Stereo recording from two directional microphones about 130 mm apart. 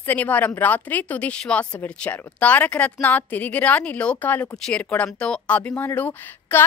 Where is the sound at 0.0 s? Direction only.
15° left (ahead or behind).